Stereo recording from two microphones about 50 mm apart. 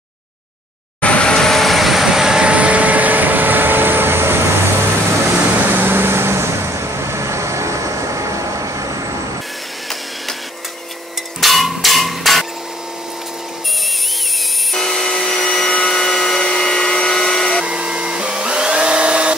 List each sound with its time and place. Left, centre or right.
1.0 s vehicle: left
1.3 s vehicle: centre
2.4 s vehicle: right
11.4 s a sound: centre
14.7 s wood: centre
17.6 s vacuum cleaner: centre